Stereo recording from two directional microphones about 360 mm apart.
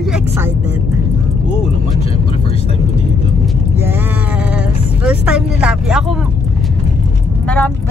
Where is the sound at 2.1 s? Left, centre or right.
Centre.